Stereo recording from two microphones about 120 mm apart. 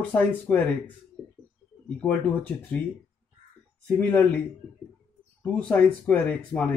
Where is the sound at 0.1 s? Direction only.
15° left (ahead or behind).